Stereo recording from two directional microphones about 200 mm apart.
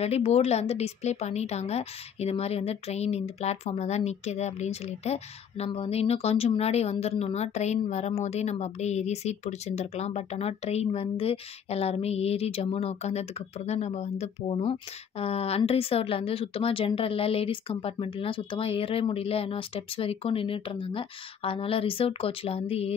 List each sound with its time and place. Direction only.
0.0 s a woman's voice: 30° left (ahead or behind)